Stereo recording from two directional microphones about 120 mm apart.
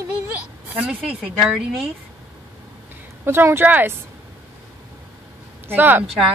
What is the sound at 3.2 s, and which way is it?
Speech, 20° right (ahead or behind).